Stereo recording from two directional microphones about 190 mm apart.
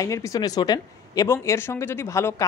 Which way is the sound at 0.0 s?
15° left (ahead or behind).